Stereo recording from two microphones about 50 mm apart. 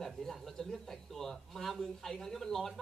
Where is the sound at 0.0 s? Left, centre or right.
Centre.